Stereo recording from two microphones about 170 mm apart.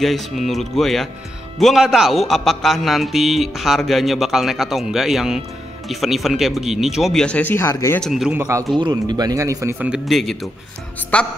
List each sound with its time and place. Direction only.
0.0 s a man's voice: centre (ahead or behind)
8.1 s a man's voice: 5° right (ahead or behind)
8.7 s a man's voice: 25° right (ahead or behind); by 11.2 s 10° left (ahead or behind)